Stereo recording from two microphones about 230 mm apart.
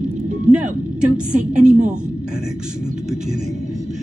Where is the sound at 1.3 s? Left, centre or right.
Right.